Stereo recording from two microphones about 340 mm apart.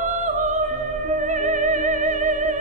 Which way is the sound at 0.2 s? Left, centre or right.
Right.